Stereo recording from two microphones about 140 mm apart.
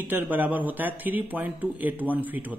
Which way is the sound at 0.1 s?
10° right (ahead or behind).